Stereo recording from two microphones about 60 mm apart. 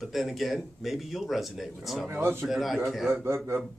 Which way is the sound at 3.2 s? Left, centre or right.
Right.